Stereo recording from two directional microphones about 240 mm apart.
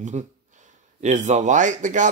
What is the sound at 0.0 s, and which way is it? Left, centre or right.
Speech, right.